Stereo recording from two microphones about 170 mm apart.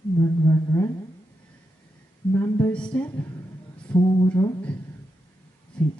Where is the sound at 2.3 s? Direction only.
15° left (ahead or behind).